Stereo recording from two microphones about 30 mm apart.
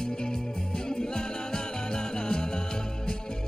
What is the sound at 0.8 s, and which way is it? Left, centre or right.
Music, left.